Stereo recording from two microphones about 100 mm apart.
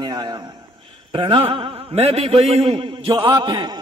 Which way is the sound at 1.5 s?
75° right (ahead or behind).